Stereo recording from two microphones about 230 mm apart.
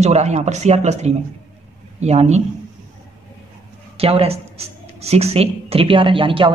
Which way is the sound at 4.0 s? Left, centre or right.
Right.